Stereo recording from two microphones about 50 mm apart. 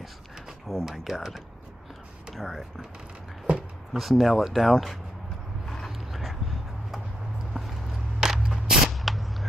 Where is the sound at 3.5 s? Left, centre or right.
Right.